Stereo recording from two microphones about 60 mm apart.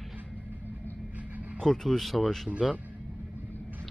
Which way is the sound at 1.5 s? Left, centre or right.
Centre.